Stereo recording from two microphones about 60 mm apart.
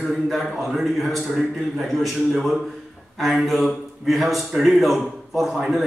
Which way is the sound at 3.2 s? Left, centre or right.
Centre.